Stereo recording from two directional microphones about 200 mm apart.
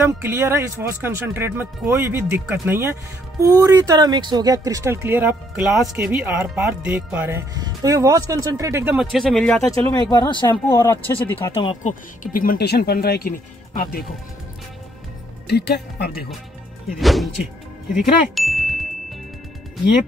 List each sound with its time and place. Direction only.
0.0 s speech: 15° right (ahead or behind); by 9.6 s 5° left (ahead or behind)
9.7 s speech: 20° left (ahead or behind)
11.8 s speech: 40° left (ahead or behind)
15.4 s speech: 55° left (ahead or behind)
16.9 s speech: centre (ahead or behind)
18.3 s ding: centre (ahead or behind)